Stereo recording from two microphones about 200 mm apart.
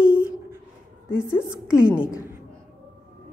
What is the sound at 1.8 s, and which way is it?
Speech, 5° right (ahead or behind).